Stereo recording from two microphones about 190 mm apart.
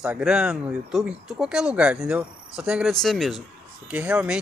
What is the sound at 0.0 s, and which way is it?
Speech, 5° right (ahead or behind).